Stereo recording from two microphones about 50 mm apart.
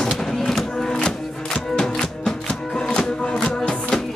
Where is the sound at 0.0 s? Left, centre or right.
Centre.